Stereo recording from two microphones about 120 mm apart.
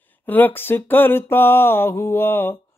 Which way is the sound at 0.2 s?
15° left (ahead or behind).